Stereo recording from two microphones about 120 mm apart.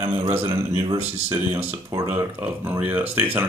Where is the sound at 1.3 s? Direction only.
20° right (ahead or behind).